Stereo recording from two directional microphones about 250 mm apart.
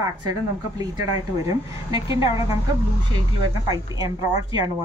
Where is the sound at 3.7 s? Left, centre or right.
Centre.